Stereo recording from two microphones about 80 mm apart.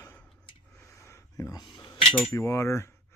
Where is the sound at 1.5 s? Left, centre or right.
Left.